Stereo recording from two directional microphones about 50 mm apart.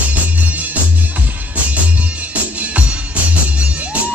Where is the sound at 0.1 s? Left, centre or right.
Right.